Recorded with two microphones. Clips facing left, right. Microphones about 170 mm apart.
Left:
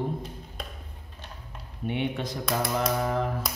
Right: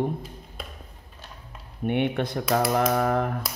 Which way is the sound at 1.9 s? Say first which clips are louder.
Right 5 dB; 60° right (ahead or behind).